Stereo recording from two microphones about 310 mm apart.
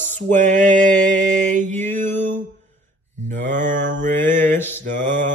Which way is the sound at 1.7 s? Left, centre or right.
Centre.